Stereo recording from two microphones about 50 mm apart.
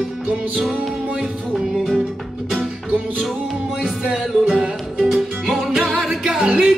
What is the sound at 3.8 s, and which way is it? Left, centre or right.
Music, centre.